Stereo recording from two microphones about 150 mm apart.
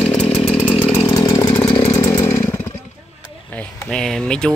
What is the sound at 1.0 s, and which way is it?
Chainsaw, 25° left (ahead or behind).